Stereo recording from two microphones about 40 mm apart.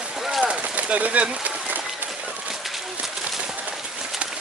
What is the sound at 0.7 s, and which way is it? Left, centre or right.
Speech, right.